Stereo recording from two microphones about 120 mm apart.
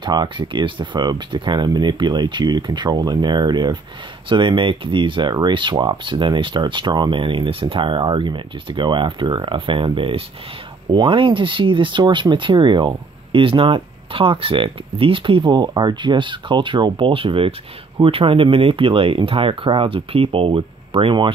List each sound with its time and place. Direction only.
0.0 s speech: 40° right (ahead or behind)